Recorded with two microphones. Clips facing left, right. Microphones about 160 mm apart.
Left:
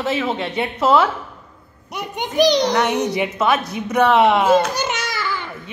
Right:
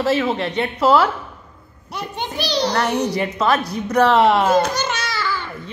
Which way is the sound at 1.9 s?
15° left (ahead or behind).